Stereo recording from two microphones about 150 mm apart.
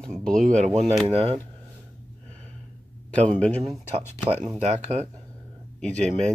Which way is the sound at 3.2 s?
5° left (ahead or behind).